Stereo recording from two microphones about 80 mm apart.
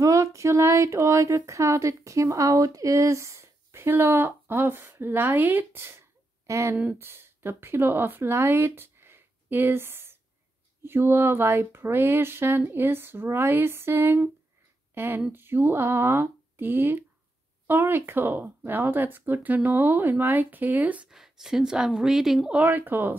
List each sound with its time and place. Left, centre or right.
0.0 s speech: right; by 21.1 s centre
21.1 s speech: centre
22.5 s speech: right